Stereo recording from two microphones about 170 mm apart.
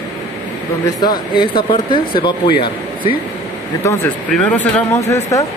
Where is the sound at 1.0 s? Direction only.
25° left (ahead or behind).